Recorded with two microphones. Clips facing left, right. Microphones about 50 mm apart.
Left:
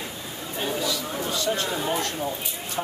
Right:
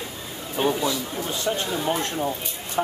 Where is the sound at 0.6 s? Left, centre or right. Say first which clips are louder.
Right 5 dB; right.